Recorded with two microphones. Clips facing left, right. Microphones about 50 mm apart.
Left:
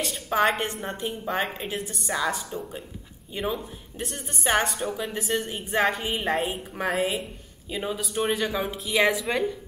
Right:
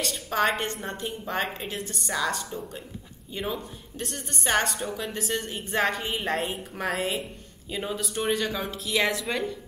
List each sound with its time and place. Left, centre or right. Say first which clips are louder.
0.0 s a woman's voice: left 2 dB; centre